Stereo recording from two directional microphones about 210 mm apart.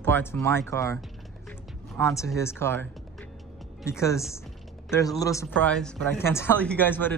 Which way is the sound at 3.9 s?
15° left (ahead or behind).